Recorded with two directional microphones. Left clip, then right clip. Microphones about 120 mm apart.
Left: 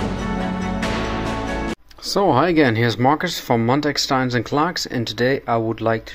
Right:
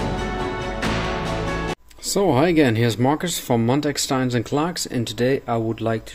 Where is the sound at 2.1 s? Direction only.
30° right (ahead or behind).